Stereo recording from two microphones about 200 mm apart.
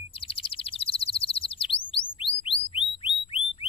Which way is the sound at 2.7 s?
25° left (ahead or behind).